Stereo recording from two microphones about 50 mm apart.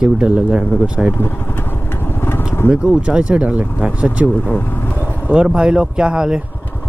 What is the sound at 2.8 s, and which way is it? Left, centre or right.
Speech, centre.